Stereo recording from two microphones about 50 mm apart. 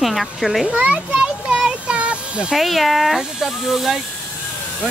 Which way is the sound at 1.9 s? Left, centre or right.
Right.